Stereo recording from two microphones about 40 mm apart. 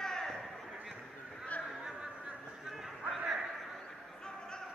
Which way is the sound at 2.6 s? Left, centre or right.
Centre.